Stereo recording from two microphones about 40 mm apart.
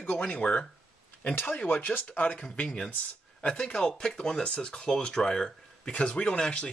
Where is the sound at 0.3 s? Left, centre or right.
Left.